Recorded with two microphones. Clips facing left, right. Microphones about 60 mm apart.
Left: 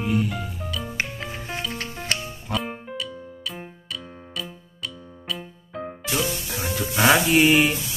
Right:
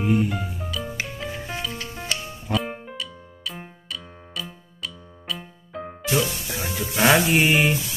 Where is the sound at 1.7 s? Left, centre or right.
Left.